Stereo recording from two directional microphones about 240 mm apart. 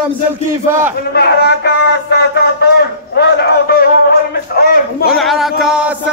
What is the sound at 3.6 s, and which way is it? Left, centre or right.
Music, left.